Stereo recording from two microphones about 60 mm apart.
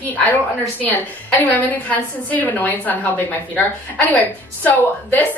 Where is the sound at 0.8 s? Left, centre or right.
Left.